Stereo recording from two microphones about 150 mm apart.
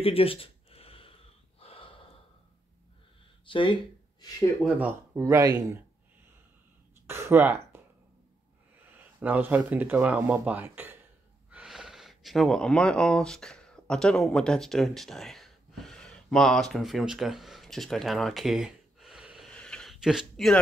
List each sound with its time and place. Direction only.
0.0 s a sound: 40° left (ahead or behind)
1.6 s gasp: 40° left (ahead or behind)
3.4 s speech: 35° left (ahead or behind)
4.6 s speech: 10° right (ahead or behind)
5.2 s speech: 20° right (ahead or behind)
7.1 s speech: 15° right (ahead or behind)
8.9 s speech: 10° right (ahead or behind)
11.5 s a sound: 5° right (ahead or behind)